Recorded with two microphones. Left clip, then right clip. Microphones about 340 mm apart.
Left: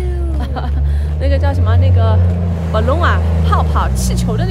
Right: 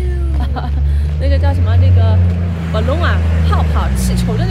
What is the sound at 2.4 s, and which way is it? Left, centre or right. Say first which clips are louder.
Vehicle: left 2 dB; left.